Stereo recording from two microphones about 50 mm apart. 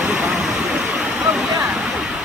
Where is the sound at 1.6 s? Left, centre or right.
Centre.